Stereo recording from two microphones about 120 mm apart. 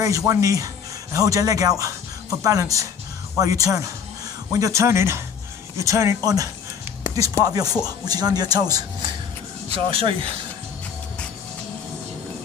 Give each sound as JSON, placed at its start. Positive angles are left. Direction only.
{"t": 0.0, "sound": "speech", "side_deg": -30}
{"t": 9.8, "sound": "speech", "side_deg": -50}